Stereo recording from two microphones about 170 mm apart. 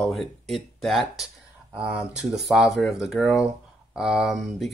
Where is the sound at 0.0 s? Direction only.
Centre (ahead or behind).